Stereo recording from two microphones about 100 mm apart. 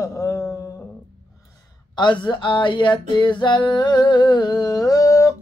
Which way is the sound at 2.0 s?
50° left (ahead or behind).